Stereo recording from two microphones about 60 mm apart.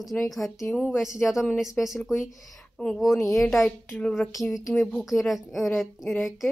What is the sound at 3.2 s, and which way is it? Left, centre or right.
Speech, centre.